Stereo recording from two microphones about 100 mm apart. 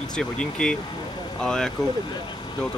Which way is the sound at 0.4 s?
10° left (ahead or behind).